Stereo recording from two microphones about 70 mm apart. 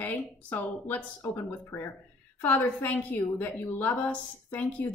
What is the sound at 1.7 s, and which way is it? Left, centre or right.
Speech, left.